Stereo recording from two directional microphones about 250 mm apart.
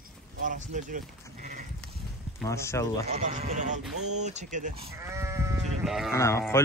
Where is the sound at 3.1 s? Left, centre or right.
Right.